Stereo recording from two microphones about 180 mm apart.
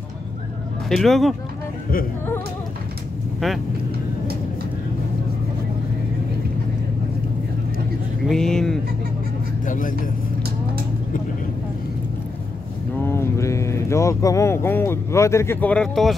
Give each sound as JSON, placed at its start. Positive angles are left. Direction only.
{"t": 0.8, "sound": "speech", "side_deg": 0}
{"t": 3.3, "sound": "speech", "side_deg": 0}
{"t": 8.3, "sound": "speech", "side_deg": 5}
{"t": 9.7, "sound": "speech", "side_deg": 50}
{"t": 13.0, "sound": "speech", "side_deg": 15}